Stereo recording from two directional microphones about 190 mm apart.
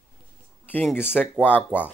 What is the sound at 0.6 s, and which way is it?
Speech, 10° left (ahead or behind).